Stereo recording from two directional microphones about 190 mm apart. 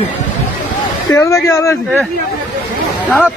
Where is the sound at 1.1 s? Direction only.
15° left (ahead or behind).